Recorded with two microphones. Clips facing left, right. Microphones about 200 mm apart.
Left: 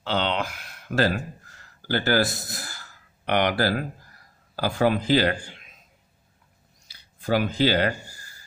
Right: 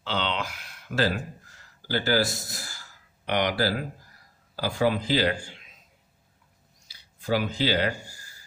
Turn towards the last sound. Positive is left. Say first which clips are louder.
# left 4 dB
turn(degrees=55)  # may be behind; listen again after turning